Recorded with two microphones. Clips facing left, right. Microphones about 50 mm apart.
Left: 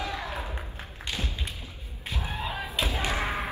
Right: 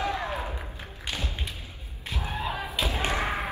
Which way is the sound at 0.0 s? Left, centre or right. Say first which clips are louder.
Right 4 dB; right.